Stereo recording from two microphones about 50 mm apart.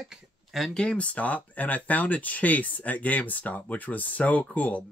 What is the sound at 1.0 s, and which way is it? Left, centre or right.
Speech, left.